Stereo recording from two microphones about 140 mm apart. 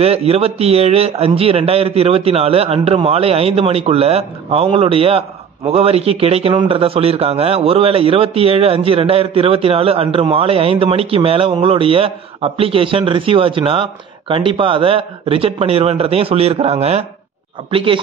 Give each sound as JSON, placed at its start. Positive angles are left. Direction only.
{"t": 0.0, "sound": "a man's voice", "side_deg": -45}